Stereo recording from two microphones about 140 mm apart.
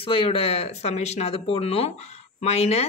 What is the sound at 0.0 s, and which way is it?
Speech, 40° left (ahead or behind).